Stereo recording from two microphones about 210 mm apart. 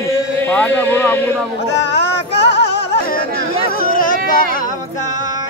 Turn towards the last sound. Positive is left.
turn(degrees=40)  # may be behind; listen again after turning